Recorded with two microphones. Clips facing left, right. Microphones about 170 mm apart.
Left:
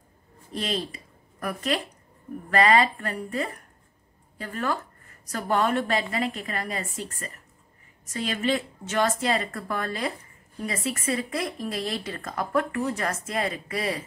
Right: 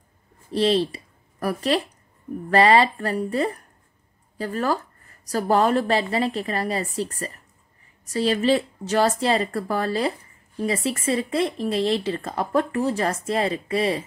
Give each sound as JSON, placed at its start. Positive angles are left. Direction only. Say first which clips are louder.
{"t": 0.5, "sound": "a woman's voice", "louder": "right 10 dB", "side_deg": -30}